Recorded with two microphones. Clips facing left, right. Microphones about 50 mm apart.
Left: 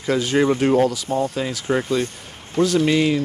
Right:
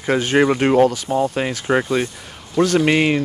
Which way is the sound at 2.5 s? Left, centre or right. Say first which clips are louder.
Right 2 dB; right.